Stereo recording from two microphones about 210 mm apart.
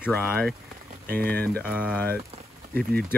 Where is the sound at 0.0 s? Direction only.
10° left (ahead or behind).